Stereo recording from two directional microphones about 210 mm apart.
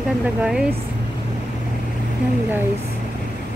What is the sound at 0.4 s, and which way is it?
Speech, 5° right (ahead or behind).